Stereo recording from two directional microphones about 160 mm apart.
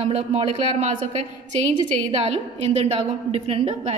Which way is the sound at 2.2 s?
40° right (ahead or behind).